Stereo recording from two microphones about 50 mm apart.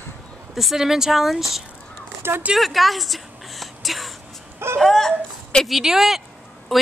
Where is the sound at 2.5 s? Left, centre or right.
Centre.